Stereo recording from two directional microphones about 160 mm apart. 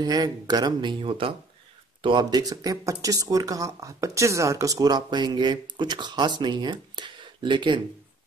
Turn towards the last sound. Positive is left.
turn(degrees=-30)  # may be behind; listen again after turning